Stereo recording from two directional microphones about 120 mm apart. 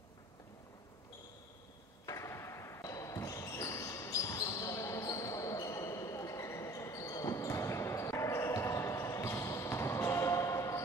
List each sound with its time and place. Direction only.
2.0 s basketball bounce: 25° left (ahead or behind)